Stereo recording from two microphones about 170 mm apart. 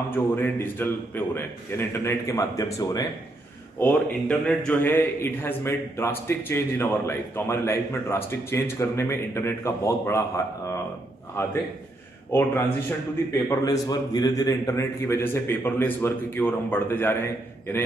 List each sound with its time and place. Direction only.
0.1 s a man's voice: 10° left (ahead or behind)
3.8 s a man's voice: 10° left (ahead or behind)